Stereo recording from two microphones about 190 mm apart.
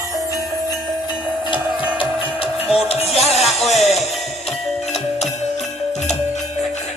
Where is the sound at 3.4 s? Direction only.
Centre (ahead or behind).